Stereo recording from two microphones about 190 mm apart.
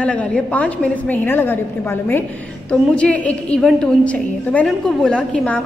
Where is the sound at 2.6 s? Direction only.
5° left (ahead or behind).